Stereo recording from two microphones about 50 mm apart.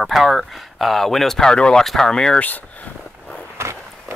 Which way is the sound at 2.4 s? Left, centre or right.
Left.